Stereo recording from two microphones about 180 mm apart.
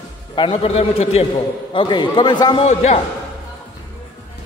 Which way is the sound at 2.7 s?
40° left (ahead or behind).